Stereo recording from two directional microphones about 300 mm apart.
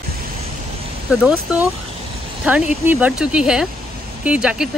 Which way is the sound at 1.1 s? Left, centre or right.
Centre.